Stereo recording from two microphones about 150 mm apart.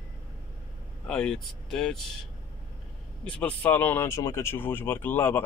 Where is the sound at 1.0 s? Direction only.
5° left (ahead or behind).